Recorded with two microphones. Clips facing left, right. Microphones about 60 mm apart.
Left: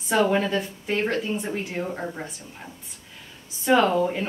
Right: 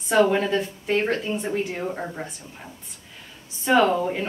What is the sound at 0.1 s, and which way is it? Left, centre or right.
Speech, centre.